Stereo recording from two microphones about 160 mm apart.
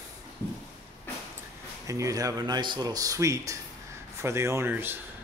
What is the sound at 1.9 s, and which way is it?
A man's voice, 20° right (ahead or behind).